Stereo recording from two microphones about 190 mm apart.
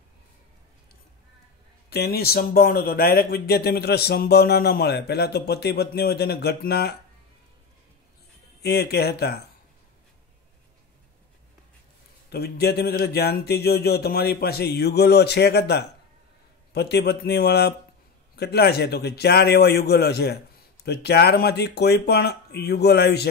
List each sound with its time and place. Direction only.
1.9 s speech: 55° left (ahead or behind)
8.6 s speech: 55° left (ahead or behind)
12.3 s speech: 55° left (ahead or behind)